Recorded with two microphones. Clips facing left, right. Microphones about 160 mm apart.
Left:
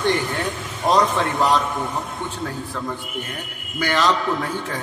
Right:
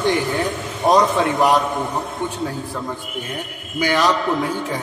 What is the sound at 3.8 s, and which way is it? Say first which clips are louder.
Speech: right 2 dB; 15° right (ahead or behind).